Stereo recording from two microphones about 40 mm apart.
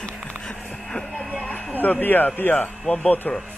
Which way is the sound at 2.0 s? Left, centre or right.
Left.